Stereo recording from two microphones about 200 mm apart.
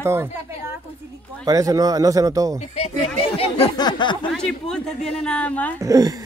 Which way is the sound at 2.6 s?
35° left (ahead or behind).